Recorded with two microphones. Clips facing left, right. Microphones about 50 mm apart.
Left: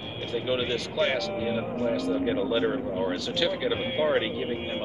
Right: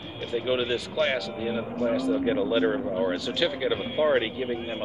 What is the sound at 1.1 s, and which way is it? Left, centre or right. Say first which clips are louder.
A man's voice: left 1 dB; centre.